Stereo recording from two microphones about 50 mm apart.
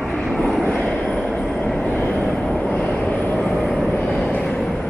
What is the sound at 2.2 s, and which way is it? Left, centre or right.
Vehicle, centre.